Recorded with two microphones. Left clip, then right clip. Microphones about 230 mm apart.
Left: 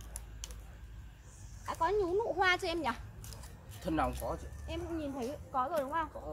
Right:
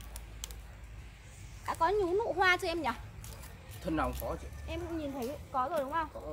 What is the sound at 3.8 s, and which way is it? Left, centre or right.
Speech, left.